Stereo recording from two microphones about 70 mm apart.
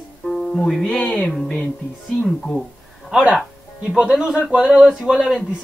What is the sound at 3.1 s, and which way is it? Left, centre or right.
Speech, centre.